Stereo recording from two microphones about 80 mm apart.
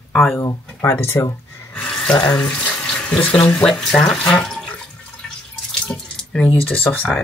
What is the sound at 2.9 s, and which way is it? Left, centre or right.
Water tap, centre.